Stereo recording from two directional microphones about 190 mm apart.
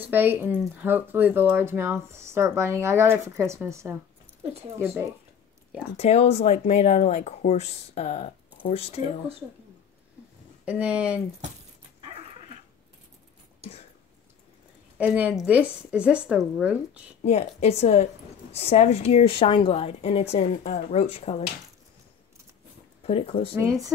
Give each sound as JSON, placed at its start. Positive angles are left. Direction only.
{"t": 0.0, "sound": "speech", "side_deg": -10}
{"t": 5.9, "sound": "speech", "side_deg": 35}
{"t": 10.6, "sound": "speech", "side_deg": -5}
{"t": 15.0, "sound": "speech", "side_deg": -5}
{"t": 17.2, "sound": "speech", "side_deg": 35}
{"t": 23.0, "sound": "speech", "side_deg": 30}
{"t": 23.6, "sound": "speech", "side_deg": -15}